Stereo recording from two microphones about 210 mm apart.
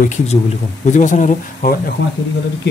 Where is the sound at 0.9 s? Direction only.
35° left (ahead or behind).